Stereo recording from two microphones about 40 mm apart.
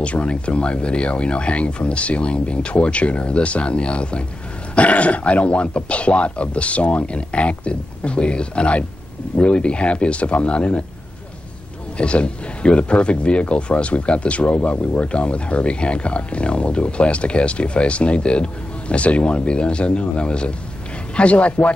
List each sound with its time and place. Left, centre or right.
0.0 s speech: left
12.0 s speech: left